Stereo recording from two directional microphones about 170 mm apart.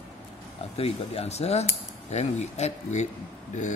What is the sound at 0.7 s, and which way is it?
Speech, 35° left (ahead or behind).